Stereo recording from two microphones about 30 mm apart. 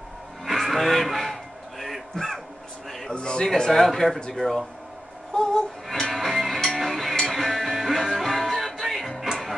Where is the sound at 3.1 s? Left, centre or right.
Left.